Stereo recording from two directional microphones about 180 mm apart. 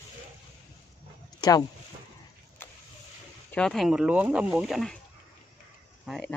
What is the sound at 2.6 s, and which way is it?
Vehicle, 10° left (ahead or behind).